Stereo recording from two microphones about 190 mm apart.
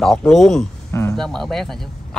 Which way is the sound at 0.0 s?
Centre (ahead or behind).